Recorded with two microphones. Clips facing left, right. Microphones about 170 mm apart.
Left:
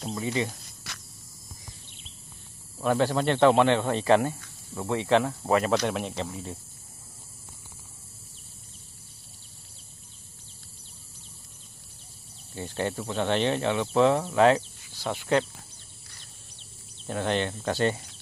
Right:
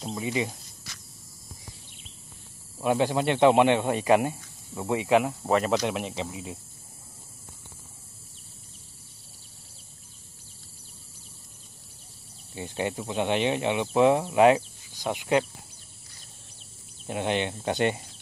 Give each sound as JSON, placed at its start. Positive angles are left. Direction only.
{"t": 0.1, "sound": "speech", "side_deg": -15}
{"t": 0.8, "sound": "a sound", "side_deg": 65}
{"t": 2.8, "sound": "speech", "side_deg": -10}
{"t": 5.4, "sound": "speech", "side_deg": 0}
{"t": 12.5, "sound": "speech", "side_deg": -15}
{"t": 17.0, "sound": "speech", "side_deg": -10}